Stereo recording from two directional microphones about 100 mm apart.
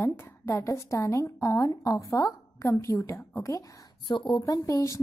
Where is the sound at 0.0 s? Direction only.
25° left (ahead or behind).